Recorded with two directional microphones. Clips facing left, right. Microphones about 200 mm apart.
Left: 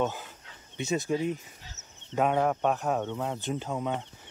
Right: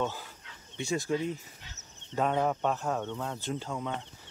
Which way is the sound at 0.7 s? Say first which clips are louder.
Left 2 dB; 20° left (ahead or behind).